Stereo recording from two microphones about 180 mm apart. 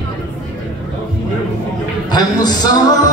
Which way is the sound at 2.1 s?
20° left (ahead or behind).